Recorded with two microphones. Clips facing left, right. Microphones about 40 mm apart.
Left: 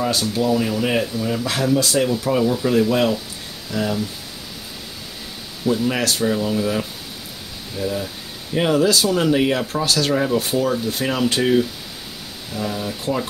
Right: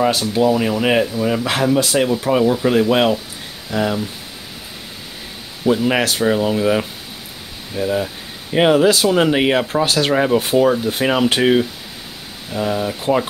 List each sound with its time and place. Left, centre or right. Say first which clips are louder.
0.0 s speech: right 5 dB; right
5.7 s speech: right 4 dB; right